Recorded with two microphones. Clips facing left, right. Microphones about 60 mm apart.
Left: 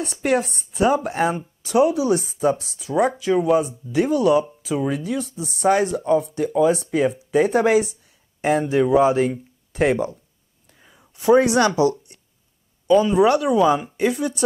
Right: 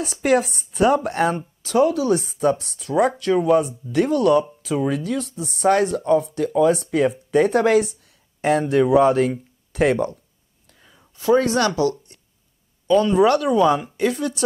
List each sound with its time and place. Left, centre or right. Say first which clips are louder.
0.0 s speech: right 2 dB; centre
10.7 s a sound: left 1 dB; centre
12.8 s speech: even; centre